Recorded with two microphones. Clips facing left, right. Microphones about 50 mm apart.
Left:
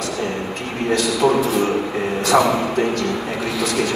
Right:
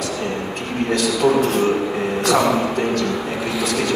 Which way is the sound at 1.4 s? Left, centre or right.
Right.